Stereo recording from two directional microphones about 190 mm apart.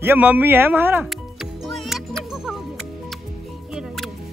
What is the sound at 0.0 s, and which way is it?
Speech, 10° right (ahead or behind).